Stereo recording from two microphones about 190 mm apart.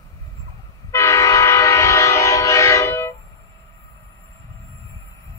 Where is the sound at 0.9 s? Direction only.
15° left (ahead or behind).